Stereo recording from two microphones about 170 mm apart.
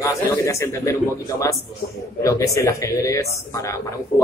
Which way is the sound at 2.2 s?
20° left (ahead or behind).